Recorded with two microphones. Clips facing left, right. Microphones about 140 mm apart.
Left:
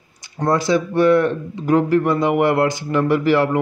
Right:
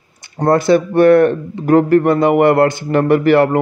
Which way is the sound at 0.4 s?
60° right (ahead or behind).